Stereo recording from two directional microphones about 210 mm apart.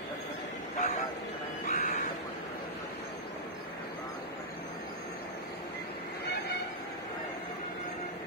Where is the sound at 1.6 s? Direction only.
40° left (ahead or behind).